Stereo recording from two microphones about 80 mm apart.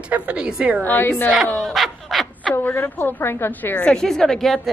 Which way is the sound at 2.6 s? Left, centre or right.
Left.